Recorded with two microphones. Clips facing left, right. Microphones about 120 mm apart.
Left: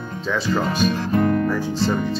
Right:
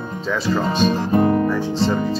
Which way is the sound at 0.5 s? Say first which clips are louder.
Right 3 dB; 25° right (ahead or behind).